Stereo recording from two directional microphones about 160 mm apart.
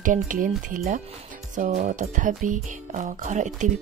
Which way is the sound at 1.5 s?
50° right (ahead or behind).